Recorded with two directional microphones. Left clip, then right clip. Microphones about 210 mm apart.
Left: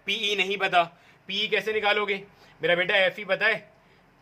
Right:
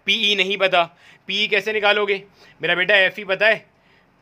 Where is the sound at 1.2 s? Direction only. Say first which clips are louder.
Right 6 dB; 50° right (ahead or behind).